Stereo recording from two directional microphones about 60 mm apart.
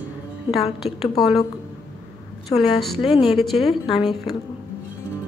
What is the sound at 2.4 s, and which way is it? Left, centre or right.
A woman's voice, centre.